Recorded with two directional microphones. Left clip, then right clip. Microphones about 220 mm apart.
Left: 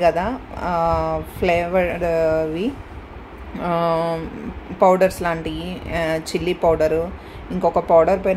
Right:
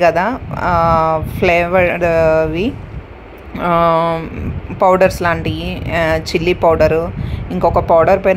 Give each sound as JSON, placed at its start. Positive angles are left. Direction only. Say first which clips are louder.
{"t": 0.0, "sound": "speech", "louder": "right 6 dB", "side_deg": -15}